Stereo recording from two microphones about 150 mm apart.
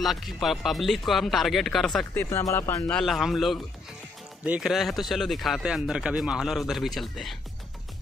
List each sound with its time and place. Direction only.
0.0 s speech: centre (ahead or behind)
2.1 s speech: 20° left (ahead or behind)
2.9 s speech: centre (ahead or behind)